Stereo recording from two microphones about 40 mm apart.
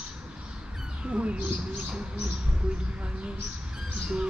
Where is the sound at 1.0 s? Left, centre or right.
Right.